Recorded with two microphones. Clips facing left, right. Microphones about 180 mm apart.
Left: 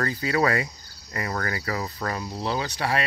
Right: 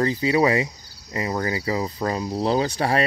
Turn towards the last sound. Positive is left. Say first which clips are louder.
# right 5 dB
turn(degrees=-40)  # may be behind; listen again after turning